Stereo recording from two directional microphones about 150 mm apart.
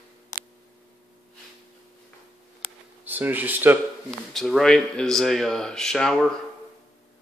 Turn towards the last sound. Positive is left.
turn(degrees=5)  # may be behind; listen again after turning